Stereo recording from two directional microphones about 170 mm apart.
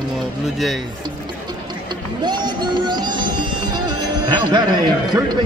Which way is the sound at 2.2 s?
25° right (ahead or behind).